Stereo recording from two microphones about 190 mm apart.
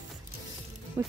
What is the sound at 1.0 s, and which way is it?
Speech, 15° right (ahead or behind).